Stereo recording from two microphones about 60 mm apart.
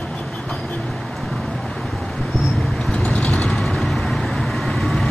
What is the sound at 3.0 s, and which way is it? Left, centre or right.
Vehicle, left.